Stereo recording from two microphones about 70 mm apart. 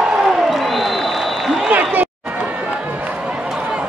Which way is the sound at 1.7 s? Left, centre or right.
Right.